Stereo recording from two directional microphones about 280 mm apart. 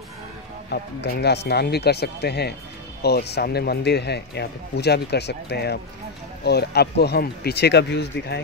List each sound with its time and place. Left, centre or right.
0.7 s speech: left